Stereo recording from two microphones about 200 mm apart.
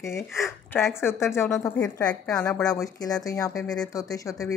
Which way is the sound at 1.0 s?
10° left (ahead or behind).